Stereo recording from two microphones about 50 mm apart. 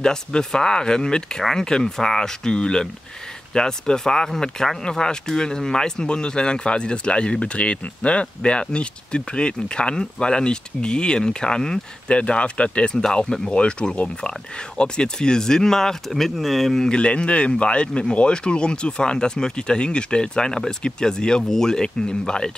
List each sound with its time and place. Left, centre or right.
0.0 s speech: centre
16.9 s speech: left